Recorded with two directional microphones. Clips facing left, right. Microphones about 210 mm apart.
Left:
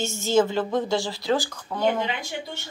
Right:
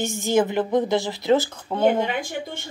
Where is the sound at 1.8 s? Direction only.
50° right (ahead or behind).